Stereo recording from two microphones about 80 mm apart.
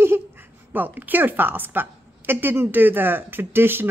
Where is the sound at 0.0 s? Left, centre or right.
Right.